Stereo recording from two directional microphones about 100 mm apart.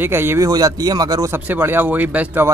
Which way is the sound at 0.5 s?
40° right (ahead or behind).